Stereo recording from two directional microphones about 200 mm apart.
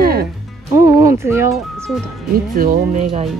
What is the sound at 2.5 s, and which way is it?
Speech, 45° right (ahead or behind).